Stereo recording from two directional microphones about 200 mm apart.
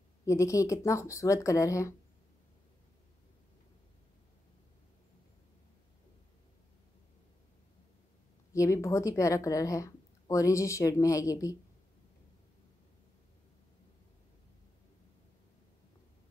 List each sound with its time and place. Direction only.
0.2 s a woman's voice: 15° left (ahead or behind)
8.5 s a woman's voice: 15° left (ahead or behind)